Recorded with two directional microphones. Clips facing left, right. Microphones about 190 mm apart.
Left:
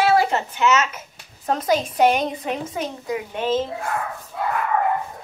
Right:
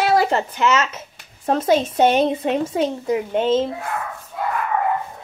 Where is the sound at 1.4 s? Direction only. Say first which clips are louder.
Right 4 dB; 30° right (ahead or behind).